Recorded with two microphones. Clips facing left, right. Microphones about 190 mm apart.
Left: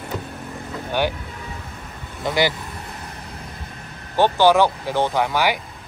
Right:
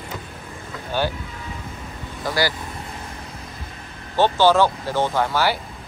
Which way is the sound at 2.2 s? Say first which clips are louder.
Left 2 dB; 20° left (ahead or behind).